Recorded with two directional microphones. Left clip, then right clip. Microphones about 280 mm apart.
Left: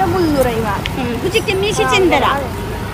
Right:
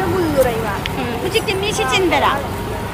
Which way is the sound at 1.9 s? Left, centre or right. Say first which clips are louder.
Left 2 dB; centre.